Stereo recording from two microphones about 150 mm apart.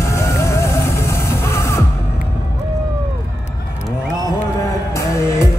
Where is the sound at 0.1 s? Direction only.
20° left (ahead or behind).